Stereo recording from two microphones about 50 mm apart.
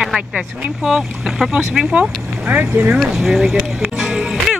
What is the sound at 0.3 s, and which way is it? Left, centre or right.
Speech, right.